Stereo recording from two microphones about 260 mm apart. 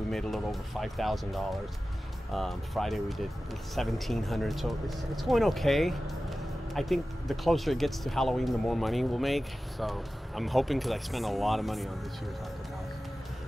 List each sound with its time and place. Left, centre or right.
0.1 s speech: centre